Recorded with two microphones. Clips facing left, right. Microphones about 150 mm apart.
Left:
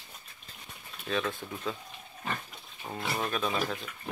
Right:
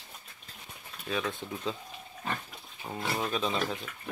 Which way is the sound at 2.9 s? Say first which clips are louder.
Right 1 dB; 5° right (ahead or behind).